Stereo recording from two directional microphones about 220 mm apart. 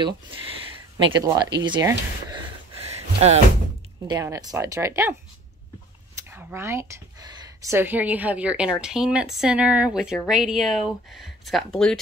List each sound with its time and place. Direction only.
0.9 s speech: 15° right (ahead or behind)
2.9 s a sound: 30° right (ahead or behind)
4.1 s speech: 15° right (ahead or behind)
6.1 s speech: 10° right (ahead or behind)